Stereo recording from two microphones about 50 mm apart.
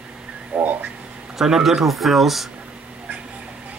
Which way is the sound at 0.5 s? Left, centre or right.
Right.